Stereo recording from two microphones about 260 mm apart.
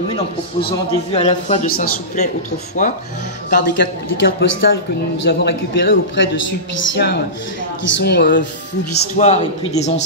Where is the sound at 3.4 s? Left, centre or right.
Left.